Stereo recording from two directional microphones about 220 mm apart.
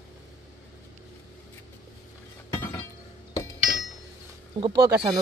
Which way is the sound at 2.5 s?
10° left (ahead or behind).